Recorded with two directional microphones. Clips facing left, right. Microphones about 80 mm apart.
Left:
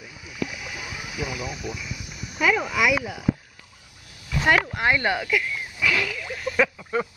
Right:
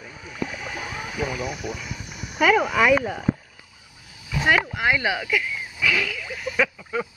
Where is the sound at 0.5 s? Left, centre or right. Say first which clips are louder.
Right 3 dB; right.